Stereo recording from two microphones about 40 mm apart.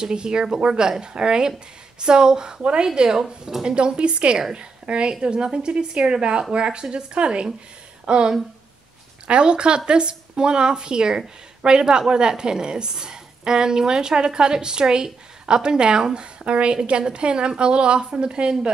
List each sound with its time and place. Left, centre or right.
0.0 s a woman's voice: right